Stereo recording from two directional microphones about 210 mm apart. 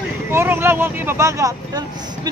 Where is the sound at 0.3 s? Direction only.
10° right (ahead or behind).